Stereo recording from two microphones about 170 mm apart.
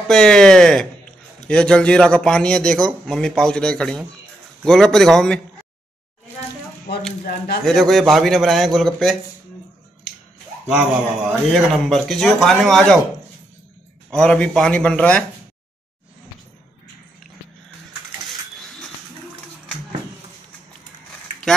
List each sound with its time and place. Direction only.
0.1 s a man's voice: 5° left (ahead or behind)
7.2 s speech: 65° left (ahead or behind)
7.6 s a man's voice: centre (ahead or behind)
11.2 s a man's voice: centre (ahead or behind)
14.1 s a man's voice: 5° left (ahead or behind)
18.2 s a sound: centre (ahead or behind)